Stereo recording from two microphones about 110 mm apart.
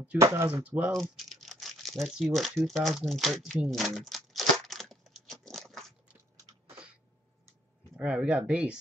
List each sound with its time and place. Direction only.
0.2 s speech: 25° right (ahead or behind)
0.9 s speech: centre (ahead or behind)
3.7 s crumpling: centre (ahead or behind)
7.9 s speech: 10° right (ahead or behind)